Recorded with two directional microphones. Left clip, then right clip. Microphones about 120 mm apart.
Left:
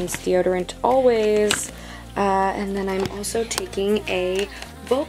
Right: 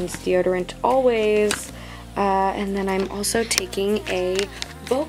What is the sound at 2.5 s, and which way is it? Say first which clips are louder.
Speech: right 1 dB; 35° right (ahead or behind).